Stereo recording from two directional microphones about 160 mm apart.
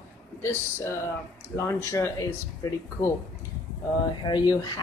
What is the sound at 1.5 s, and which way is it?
Speech, 20° left (ahead or behind).